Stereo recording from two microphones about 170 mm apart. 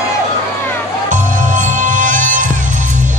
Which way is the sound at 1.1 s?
50° right (ahead or behind).